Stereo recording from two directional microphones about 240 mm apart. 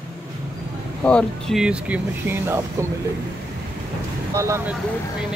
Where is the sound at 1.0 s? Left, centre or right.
Centre.